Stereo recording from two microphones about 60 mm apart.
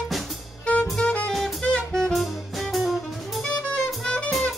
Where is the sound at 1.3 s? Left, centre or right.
Centre.